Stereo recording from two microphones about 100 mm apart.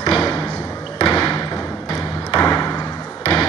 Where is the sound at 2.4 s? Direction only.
25° left (ahead or behind).